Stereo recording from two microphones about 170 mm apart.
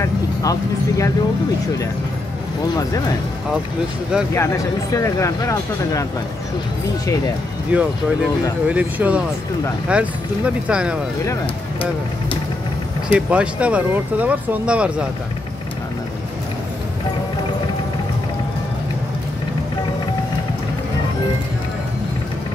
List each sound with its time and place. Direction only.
0.0 s speech: 20° left (ahead or behind)
4.4 s speech: 20° left (ahead or behind)
7.7 s speech: 5° right (ahead or behind)
13.1 s speech: 5° right (ahead or behind)